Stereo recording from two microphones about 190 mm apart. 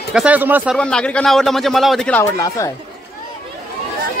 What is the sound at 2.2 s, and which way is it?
Speech, 15° left (ahead or behind).